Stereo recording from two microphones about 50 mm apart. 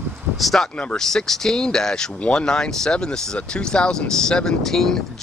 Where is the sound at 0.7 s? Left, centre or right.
Centre.